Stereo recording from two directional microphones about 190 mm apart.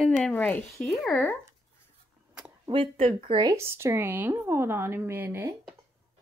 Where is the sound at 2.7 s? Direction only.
30° right (ahead or behind); by 5.5 s 10° right (ahead or behind).